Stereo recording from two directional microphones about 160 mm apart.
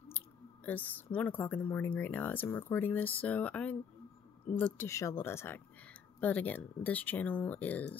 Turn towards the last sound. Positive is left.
turn(degrees=10)  # may be behind; listen again after turning